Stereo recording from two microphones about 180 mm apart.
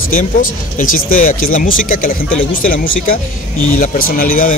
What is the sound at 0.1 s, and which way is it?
Speech, 50° left (ahead or behind).